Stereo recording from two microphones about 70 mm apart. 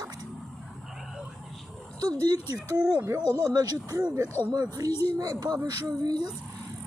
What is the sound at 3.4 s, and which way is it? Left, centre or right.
Speech, right.